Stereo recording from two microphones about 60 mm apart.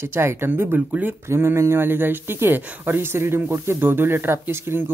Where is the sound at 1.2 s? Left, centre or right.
Right.